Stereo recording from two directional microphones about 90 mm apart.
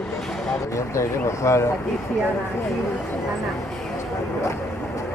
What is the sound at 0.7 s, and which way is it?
Speech, 35° left (ahead or behind).